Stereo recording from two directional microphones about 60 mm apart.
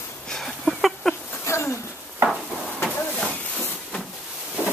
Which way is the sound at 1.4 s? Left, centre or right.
Left.